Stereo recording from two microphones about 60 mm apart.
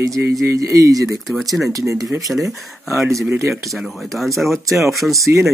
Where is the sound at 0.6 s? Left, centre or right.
Right.